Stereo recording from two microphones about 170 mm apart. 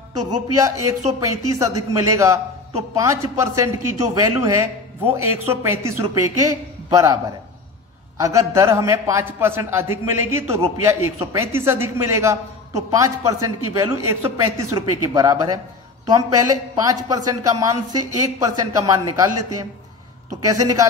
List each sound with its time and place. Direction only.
0.6 s a man's voice: 20° right (ahead or behind)
8.2 s a man's voice: 20° right (ahead or behind)